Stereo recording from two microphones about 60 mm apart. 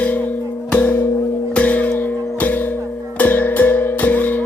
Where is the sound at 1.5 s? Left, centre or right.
Left.